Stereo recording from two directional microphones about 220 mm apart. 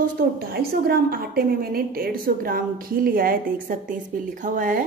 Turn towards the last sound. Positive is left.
turn(degrees=-35)  # may be behind; listen again after turning